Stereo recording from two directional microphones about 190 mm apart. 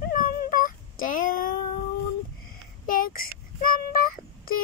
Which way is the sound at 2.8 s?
50° left (ahead or behind).